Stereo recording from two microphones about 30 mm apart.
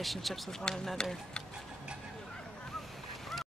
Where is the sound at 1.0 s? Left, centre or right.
Left.